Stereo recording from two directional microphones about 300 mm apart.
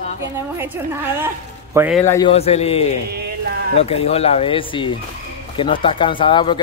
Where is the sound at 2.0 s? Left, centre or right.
Centre.